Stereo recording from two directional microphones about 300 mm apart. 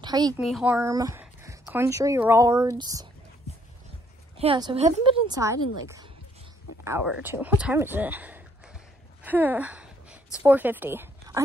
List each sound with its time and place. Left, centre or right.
0.0 s speech: centre
0.4 s speech: centre
4.4 s speech: centre
6.8 s speech: centre
9.2 s a sound: centre
10.4 s speech: centre